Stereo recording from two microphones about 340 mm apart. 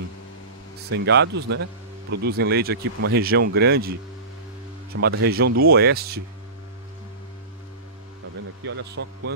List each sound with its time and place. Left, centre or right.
0.8 s speech: right
4.9 s speech: right
8.6 s speech: right